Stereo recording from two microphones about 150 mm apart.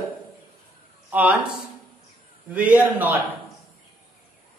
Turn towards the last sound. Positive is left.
turn(degrees=-10)  # may be behind; listen again after turning